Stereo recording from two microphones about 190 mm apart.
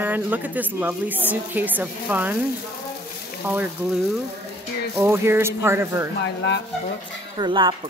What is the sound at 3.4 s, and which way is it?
A woman's voice, 10° right (ahead or behind).